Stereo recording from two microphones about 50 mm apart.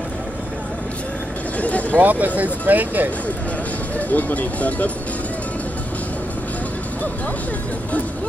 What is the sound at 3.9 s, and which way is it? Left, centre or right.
Speech, left.